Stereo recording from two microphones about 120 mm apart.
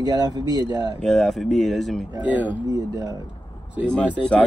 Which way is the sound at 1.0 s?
5° left (ahead or behind).